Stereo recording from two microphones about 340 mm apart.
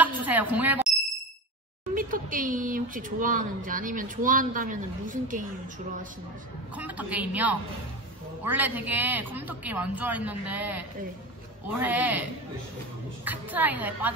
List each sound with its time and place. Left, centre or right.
0.0 s a sound: centre
2.0 s speech: right
6.8 s a man's voice: centre